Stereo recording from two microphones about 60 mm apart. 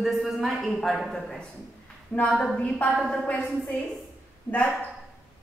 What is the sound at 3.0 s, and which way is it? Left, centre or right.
Speech, centre.